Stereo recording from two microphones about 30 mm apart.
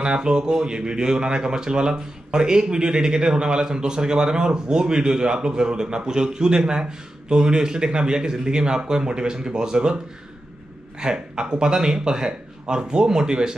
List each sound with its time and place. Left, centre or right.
0.0 s speech: right
11.0 s speech: right